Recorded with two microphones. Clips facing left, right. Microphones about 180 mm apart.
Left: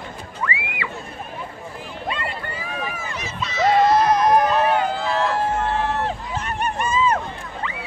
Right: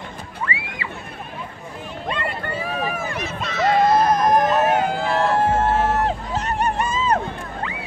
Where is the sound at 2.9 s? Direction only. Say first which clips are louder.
Right 3 dB; 60° right (ahead or behind); by 7.2 s 35° right (ahead or behind).